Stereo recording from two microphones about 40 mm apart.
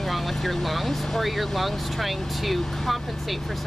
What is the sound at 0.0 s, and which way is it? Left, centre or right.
Speech, centre.